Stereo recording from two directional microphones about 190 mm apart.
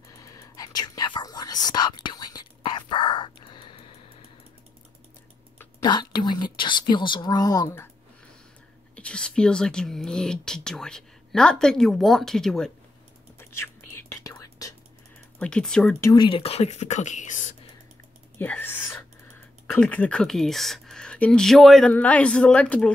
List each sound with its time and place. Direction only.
0.1 s whispering: 20° left (ahead or behind)
5.8 s speech: 25° left (ahead or behind)
8.9 s speech: 5° left (ahead or behind)
13.4 s whispering: 15° left (ahead or behind)
15.3 s speech: 5° left (ahead or behind)
16.0 s speech: 20° left (ahead or behind); by 17.6 s 40° left (ahead or behind)
18.4 s speech: 10° left (ahead or behind)